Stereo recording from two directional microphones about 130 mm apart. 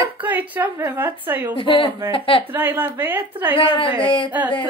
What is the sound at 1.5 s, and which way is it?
Speech, 40° left (ahead or behind).